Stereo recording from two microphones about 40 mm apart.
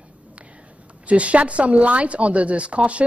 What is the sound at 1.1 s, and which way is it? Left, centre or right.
A woman's voice, right.